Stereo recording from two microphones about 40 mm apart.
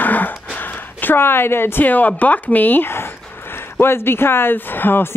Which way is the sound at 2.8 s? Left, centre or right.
Left.